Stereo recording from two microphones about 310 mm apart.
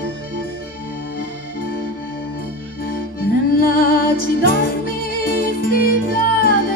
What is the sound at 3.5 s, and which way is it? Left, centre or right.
Music, left.